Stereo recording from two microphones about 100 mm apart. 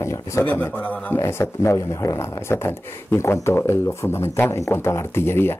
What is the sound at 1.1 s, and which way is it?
Speech, 25° left (ahead or behind).